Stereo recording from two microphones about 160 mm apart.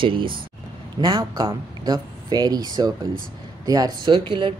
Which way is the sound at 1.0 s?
25° right (ahead or behind).